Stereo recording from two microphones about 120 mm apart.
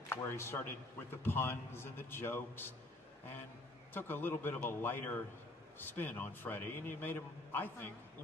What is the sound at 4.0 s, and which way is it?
A man's voice, 15° left (ahead or behind).